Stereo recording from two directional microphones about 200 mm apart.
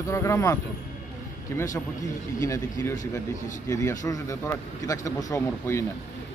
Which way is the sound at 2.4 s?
15° left (ahead or behind).